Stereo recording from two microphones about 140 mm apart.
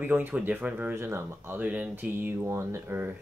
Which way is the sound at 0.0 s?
15° right (ahead or behind).